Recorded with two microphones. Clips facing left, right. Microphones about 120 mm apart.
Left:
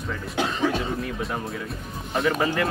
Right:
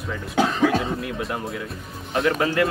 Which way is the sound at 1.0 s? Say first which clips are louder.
Right 1 dB; centre (ahead or behind).